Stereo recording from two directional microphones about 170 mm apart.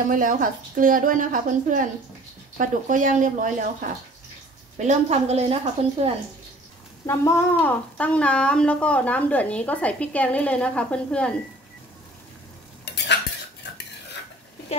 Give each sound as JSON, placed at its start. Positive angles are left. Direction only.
{"t": 0.1, "sound": "a woman's voice", "side_deg": -55}
{"t": 4.7, "sound": "a woman's voice", "side_deg": -40}
{"t": 7.1, "sound": "speech", "side_deg": 15}
{"t": 12.8, "sound": "cutlery", "side_deg": 85}